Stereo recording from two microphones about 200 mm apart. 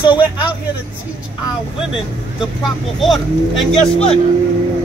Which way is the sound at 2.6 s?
Centre (ahead or behind).